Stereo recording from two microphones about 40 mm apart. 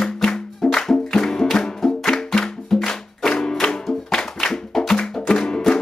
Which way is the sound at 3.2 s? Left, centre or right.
Left.